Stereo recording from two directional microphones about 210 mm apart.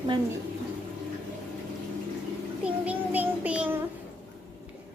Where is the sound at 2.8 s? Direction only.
5° right (ahead or behind).